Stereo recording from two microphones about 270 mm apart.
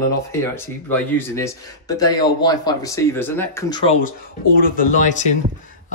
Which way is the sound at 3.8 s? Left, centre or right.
Left.